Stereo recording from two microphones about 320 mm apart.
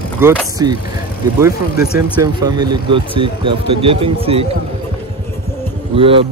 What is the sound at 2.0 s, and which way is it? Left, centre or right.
Speech, centre.